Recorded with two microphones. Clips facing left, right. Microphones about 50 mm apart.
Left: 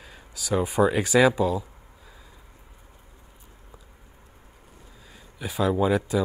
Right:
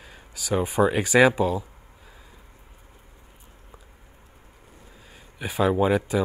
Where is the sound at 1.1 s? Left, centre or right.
Right.